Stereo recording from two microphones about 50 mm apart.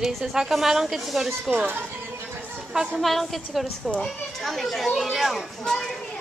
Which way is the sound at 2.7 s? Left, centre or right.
Centre.